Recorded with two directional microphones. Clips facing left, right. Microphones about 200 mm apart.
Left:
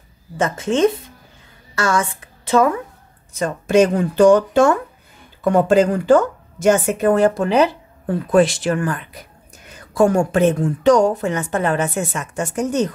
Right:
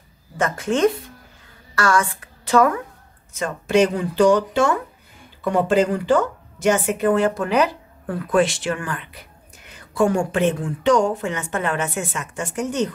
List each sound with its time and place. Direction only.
0.4 s a woman's voice: 25° left (ahead or behind)
3.3 s a woman's voice: 40° left (ahead or behind)